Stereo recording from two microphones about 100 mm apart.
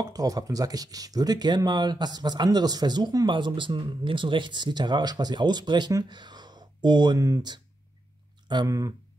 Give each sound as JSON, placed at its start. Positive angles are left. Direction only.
{"t": 0.0, "sound": "speech", "side_deg": -40}
{"t": 7.2, "sound": "speech", "side_deg": -35}
{"t": 8.6, "sound": "speech", "side_deg": -35}